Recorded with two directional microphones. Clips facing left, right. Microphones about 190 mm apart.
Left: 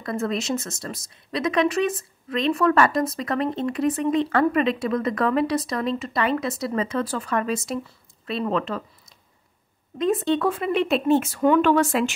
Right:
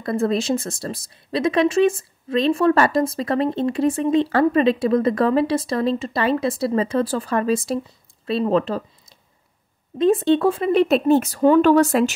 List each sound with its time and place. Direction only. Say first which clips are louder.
0.0 s speech: right 5 dB; 30° right (ahead or behind)
9.9 s speech: right 5 dB; 30° right (ahead or behind)